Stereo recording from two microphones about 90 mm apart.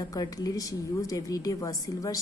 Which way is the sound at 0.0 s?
45° left (ahead or behind).